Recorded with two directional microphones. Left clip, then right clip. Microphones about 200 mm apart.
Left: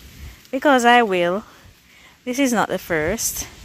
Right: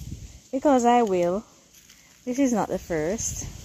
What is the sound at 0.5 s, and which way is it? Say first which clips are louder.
Speech: left 5 dB; 10° left (ahead or behind).